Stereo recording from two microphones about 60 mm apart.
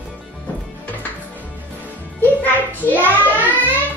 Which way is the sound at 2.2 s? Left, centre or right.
Left.